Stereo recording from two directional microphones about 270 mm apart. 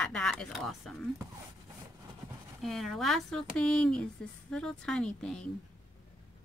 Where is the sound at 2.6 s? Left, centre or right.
Centre.